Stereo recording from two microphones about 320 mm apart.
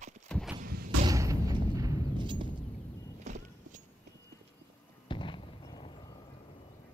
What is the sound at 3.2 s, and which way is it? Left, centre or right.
Clip-clop, right.